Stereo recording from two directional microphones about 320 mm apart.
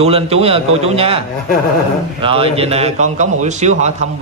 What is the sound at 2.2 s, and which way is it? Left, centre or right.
A man's voice, centre.